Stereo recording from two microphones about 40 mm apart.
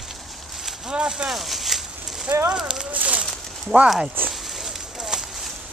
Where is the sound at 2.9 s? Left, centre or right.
Right.